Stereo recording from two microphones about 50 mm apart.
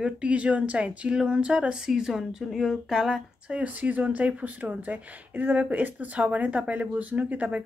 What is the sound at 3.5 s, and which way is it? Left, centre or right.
Speech, right.